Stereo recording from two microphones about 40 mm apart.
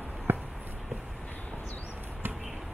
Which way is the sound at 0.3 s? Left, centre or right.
Right.